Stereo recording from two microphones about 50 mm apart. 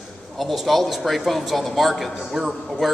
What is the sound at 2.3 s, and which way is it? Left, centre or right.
Speech, centre.